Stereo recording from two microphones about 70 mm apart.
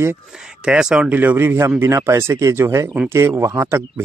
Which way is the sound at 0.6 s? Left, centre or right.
Centre.